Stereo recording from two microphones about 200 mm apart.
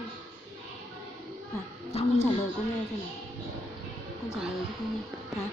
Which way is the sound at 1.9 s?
30° left (ahead or behind).